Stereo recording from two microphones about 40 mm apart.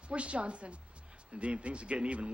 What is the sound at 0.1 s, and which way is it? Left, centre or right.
A man's voice, right.